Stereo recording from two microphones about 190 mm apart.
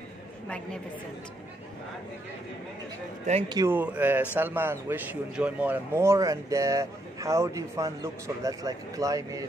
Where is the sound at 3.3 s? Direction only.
30° right (ahead or behind).